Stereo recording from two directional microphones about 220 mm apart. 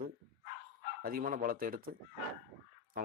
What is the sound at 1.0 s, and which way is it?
Speech, 40° right (ahead or behind).